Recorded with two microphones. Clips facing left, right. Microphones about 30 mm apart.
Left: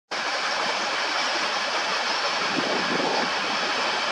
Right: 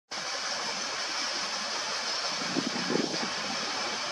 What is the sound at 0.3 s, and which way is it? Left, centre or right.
Train, left.